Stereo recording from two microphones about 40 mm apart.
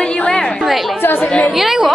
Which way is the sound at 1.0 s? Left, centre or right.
Left.